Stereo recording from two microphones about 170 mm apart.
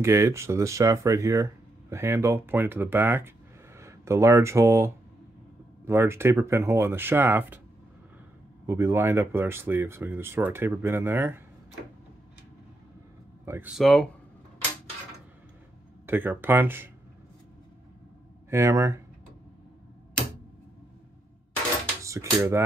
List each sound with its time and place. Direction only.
0.0 s speech: 15° right (ahead or behind)
8.6 s speech: 15° right (ahead or behind)
13.5 s speech: 10° right (ahead or behind)
13.7 s speech: centre (ahead or behind)
16.1 s speech: 10° right (ahead or behind)
18.5 s speech: 15° right (ahead or behind)
22.0 s cutlery: 20° right (ahead or behind)